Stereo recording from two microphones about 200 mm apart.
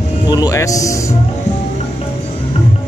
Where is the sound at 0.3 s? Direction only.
15° left (ahead or behind).